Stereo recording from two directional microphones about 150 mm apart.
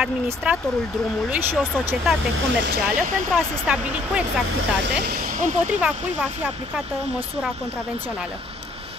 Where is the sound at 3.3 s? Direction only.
10° right (ahead or behind).